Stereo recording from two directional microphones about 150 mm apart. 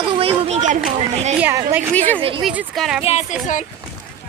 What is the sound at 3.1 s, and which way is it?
Speech, 50° left (ahead or behind).